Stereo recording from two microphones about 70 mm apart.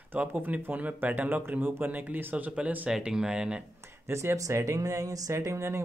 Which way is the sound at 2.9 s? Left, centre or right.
Centre.